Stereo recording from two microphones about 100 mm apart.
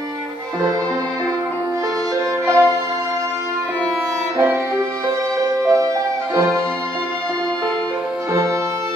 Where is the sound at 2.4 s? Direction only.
25° right (ahead or behind).